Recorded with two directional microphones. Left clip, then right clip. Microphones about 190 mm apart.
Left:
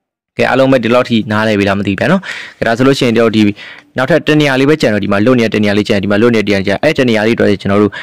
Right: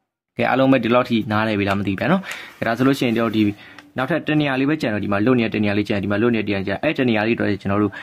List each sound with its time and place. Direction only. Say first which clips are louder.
0.4 s speech: left 8 dB; 40° left (ahead or behind)